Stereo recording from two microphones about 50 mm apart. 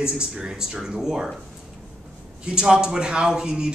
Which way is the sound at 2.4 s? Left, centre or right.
Centre.